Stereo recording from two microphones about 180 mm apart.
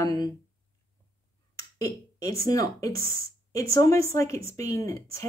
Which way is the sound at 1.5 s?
20° left (ahead or behind).